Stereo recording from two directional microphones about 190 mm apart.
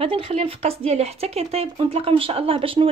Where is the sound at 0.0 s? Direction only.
30° right (ahead or behind).